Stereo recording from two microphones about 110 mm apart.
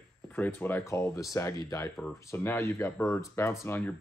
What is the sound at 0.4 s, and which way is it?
Speech, 20° left (ahead or behind).